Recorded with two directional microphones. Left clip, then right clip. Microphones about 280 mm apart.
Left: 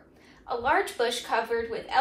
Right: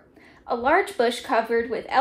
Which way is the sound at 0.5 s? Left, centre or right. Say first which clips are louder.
Right 5 dB; right.